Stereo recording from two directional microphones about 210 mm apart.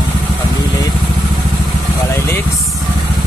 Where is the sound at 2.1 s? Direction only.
10° left (ahead or behind).